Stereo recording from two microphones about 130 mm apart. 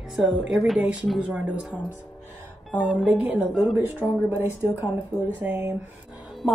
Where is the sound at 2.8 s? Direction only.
5° right (ahead or behind); by 5.8 s 20° right (ahead or behind).